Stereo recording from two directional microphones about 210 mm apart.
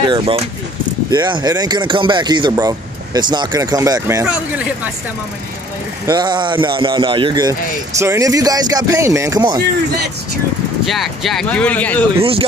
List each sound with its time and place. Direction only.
0.0 s speech: 20° right (ahead or behind)
6.0 s speech: 20° right (ahead or behind)
10.9 s speech: centre (ahead or behind)
12.2 s speech: 25° right (ahead or behind)